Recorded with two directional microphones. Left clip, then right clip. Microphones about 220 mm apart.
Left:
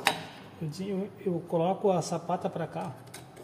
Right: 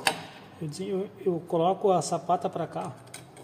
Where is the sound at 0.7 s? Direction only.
35° right (ahead or behind).